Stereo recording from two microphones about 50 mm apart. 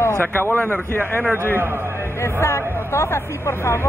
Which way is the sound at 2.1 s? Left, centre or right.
Left.